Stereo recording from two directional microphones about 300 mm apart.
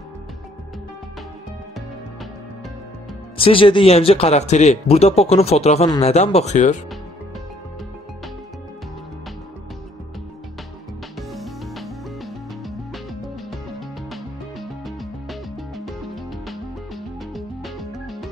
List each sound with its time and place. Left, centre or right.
3.3 s speech: centre
11.1 s music: centre